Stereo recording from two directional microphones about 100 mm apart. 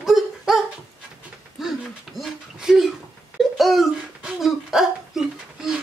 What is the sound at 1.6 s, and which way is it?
Speech, centre (ahead or behind).